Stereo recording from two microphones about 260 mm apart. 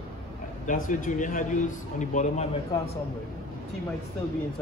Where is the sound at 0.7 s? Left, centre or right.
Left.